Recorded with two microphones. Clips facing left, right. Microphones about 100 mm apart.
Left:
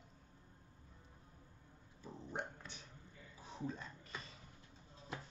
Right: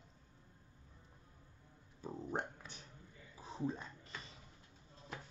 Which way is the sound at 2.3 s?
40° right (ahead or behind).